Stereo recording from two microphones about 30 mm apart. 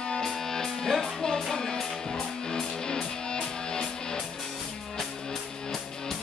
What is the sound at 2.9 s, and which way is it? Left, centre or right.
Music, left.